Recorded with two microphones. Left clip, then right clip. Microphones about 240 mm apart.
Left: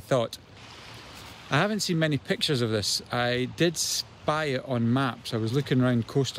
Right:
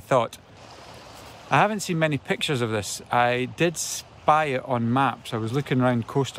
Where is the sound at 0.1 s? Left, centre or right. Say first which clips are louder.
Right 4 dB; centre.